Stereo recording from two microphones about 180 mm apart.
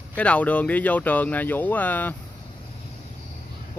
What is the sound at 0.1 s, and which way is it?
Speech, 10° left (ahead or behind).